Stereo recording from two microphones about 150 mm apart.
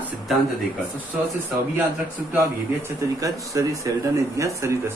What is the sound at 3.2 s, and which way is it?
Speech, 20° right (ahead or behind).